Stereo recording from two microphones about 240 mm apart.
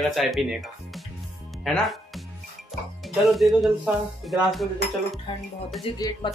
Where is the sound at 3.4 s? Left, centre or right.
Centre.